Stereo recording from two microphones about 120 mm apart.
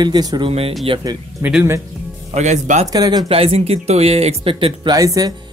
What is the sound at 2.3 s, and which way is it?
Speech, 75° right (ahead or behind).